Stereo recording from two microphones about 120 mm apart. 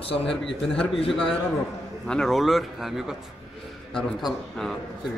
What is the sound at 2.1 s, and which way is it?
A man's voice, 5° left (ahead or behind).